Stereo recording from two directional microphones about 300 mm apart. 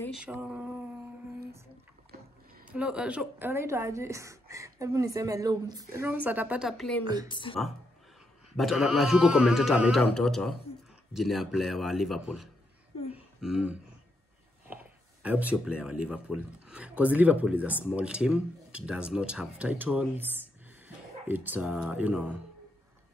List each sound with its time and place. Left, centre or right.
0.0 s speech: centre
2.7 s speech: centre
7.2 s speech: centre
8.5 s speech: centre
13.1 s a sound: centre
14.7 s speech: centre
21.5 s speech: centre